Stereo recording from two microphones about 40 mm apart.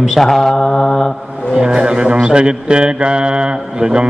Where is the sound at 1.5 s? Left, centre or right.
Right.